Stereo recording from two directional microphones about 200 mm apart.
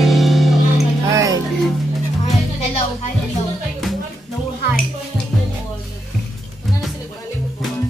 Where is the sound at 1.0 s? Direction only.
15° right (ahead or behind).